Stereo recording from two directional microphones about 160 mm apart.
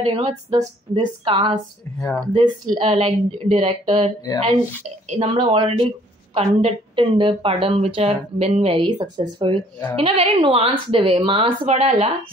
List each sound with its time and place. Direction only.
0.0 s speech: 35° right (ahead or behind)
5.2 s speech: 35° right (ahead or behind)